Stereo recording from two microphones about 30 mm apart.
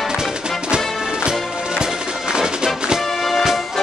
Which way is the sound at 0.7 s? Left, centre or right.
Right.